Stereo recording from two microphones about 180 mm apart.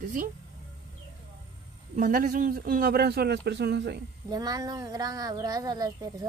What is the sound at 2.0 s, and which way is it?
A man's voice, 45° right (ahead or behind).